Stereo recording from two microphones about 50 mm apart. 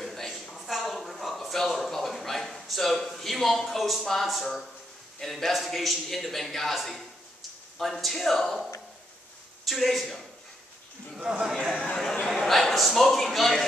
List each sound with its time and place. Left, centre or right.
0.0 s a sound: centre
5.2 s a man's voice: centre
9.7 s a man's voice: centre
11.1 s a man's voice: centre
11.7 s speech: left
12.0 s a man's voice: centre